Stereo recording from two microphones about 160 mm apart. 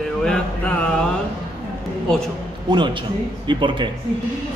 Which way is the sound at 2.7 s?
30° right (ahead or behind).